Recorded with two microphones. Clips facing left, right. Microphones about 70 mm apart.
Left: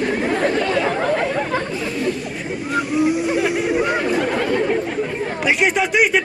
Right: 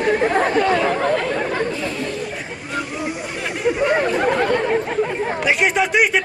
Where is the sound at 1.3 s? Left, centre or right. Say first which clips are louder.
Even; centre.